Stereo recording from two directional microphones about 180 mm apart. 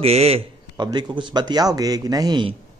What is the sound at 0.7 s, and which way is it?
A man's voice, 25° right (ahead or behind).